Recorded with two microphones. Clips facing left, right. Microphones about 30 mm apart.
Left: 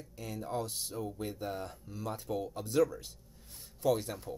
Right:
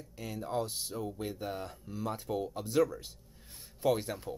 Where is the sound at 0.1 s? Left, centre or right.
Centre.